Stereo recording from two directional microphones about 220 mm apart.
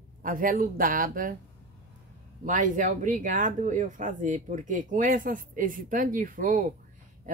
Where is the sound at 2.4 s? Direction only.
35° right (ahead or behind).